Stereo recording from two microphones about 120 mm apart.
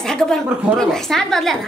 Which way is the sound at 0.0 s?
5° left (ahead or behind).